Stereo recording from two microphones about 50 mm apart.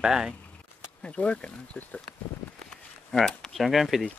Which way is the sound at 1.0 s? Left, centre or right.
Left.